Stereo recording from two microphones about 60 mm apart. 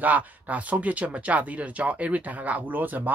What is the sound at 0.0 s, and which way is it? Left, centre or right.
Speech, right.